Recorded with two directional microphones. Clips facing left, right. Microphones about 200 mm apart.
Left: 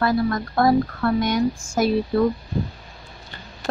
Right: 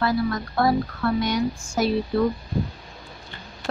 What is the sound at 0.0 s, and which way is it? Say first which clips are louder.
Speech: left 2 dB; 50° left (ahead or behind).